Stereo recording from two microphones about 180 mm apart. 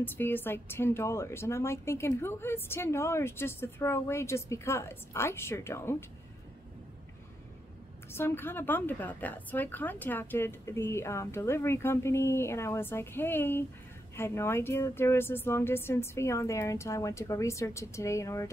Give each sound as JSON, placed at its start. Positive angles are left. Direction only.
{"t": 0.0, "sound": "a woman's voice", "side_deg": 10}
{"t": 8.1, "sound": "a woman's voice", "side_deg": 10}